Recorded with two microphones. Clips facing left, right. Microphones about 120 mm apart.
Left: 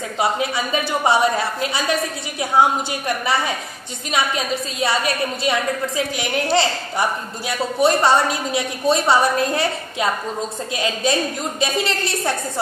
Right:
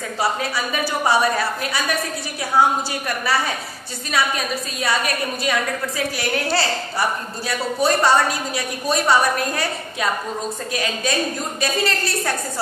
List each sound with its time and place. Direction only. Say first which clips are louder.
0.2 s a man's voice: left 2 dB; 25° left (ahead or behind)
4.1 s a man's voice: left 1 dB; 25° left (ahead or behind)